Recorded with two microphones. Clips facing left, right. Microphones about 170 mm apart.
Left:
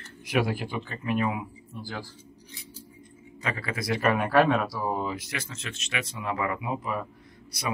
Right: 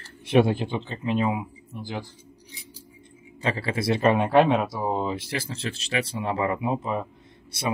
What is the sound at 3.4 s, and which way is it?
Speech, 30° right (ahead or behind).